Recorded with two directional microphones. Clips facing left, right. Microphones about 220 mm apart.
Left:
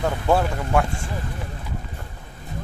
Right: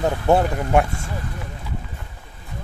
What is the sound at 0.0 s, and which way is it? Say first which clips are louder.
Speech: right 3 dB; 20° right (ahead or behind).